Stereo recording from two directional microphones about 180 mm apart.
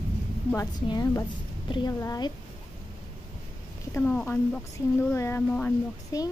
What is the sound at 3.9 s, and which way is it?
Speech, 10° left (ahead or behind).